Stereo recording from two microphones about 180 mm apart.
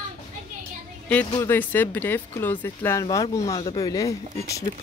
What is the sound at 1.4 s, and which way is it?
Speech, 10° left (ahead or behind).